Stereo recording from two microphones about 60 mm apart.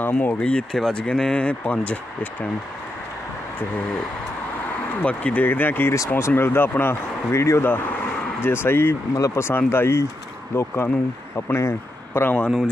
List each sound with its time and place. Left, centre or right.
0.0 s speech: left
0.4 s speech: centre
5.0 s speech: left
7.6 s speech: left
9.1 s speech: left
9.7 s speech: left